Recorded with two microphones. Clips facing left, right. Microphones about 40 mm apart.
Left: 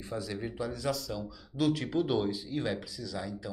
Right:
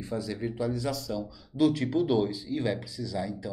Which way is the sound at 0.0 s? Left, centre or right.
Centre.